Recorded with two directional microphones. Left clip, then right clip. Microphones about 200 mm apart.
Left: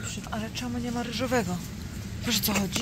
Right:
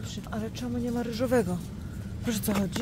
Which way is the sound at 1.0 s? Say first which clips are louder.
Right 1 dB; 60° right (ahead or behind).